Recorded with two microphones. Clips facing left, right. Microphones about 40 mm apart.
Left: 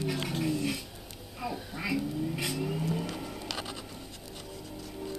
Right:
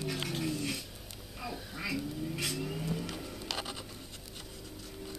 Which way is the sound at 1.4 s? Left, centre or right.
Centre.